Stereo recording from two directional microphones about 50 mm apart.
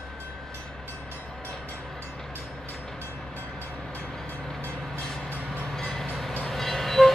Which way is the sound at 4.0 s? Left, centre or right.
Centre.